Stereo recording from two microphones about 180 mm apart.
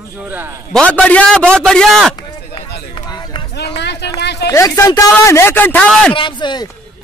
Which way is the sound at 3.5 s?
70° left (ahead or behind).